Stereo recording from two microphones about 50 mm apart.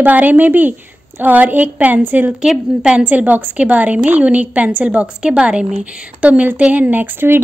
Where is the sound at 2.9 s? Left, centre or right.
Right.